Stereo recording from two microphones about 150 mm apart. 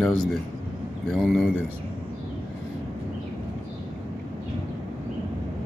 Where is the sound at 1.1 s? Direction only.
5° left (ahead or behind).